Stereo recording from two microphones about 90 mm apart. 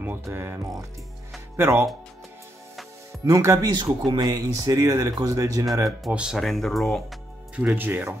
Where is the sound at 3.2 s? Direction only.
35° right (ahead or behind).